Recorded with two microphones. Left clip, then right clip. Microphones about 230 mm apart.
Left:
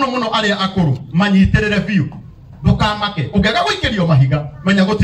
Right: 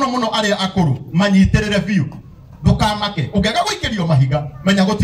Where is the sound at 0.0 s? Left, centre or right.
Right.